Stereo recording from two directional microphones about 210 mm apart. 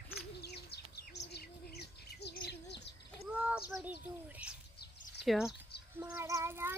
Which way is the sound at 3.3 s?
5° right (ahead or behind).